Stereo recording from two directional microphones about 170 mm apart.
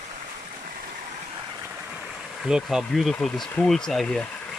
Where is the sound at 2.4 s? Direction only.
5° right (ahead or behind).